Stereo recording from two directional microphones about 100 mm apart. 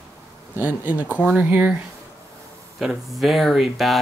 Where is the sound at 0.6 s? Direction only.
15° right (ahead or behind).